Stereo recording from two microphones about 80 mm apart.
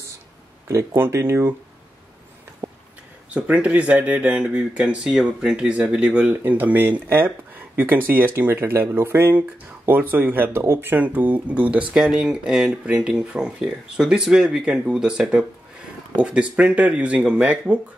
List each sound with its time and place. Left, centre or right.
1.1 s speech: right
2.6 s a sound: right
3.3 s speech: centre
11.9 s speech: centre